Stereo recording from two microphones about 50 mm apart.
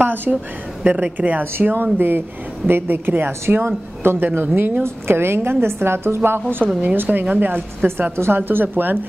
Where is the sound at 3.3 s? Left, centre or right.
Right.